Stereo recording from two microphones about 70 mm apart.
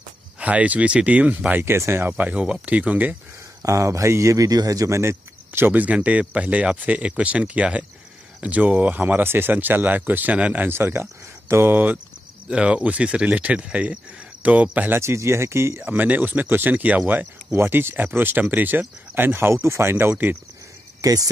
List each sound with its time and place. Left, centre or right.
0.4 s speech: centre; by 2.1 s right
2.1 s speech: centre
3.6 s speech: right
5.7 s speech: right
11.7 s speech: right
12.4 s speech: centre
15.0 s speech: right
15.9 s speech: right
17.6 s speech: right
21.0 s speech: right